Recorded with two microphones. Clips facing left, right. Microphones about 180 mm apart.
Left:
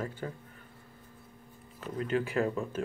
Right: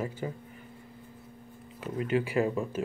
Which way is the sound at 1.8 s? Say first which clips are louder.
Right 2 dB; 10° right (ahead or behind).